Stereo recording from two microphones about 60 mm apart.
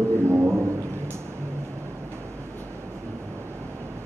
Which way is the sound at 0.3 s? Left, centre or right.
Right.